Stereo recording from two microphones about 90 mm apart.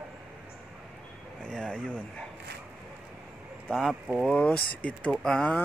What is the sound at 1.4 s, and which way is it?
Speech, 10° left (ahead or behind).